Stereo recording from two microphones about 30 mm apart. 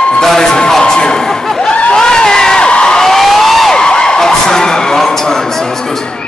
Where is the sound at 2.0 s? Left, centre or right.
Left.